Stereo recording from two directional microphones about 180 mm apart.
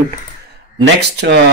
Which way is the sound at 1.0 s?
70° right (ahead or behind).